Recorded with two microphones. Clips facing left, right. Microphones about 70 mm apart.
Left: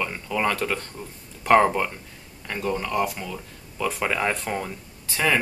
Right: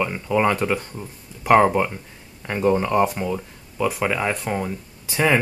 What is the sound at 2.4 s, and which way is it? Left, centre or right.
Speech, right.